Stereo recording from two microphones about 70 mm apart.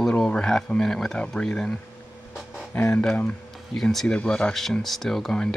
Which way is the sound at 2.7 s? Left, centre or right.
Left.